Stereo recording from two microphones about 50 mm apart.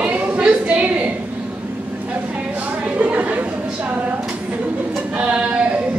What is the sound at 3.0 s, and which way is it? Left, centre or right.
Chatter, right.